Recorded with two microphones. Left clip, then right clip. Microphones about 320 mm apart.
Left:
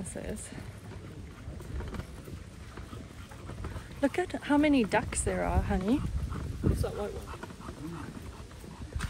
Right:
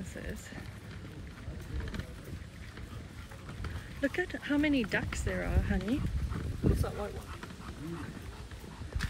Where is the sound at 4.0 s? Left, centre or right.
Centre.